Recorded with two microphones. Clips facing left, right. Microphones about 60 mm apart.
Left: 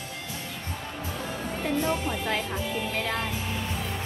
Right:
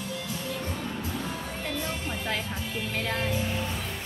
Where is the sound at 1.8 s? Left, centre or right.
Left.